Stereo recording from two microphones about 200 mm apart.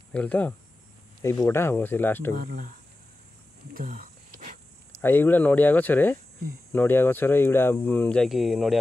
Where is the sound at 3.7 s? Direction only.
45° right (ahead or behind).